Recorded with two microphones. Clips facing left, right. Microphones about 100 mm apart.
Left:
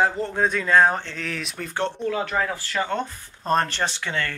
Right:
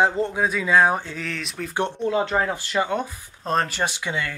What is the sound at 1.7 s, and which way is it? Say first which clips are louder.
Speech: right 2 dB; 20° right (ahead or behind).